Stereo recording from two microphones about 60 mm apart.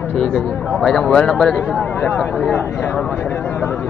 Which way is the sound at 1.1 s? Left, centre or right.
Centre.